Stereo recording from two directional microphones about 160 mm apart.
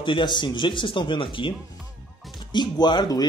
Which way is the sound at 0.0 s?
30° left (ahead or behind).